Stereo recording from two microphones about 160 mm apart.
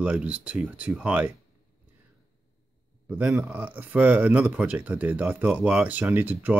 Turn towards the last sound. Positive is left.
turn(degrees=-10)  # may be behind; listen again after turning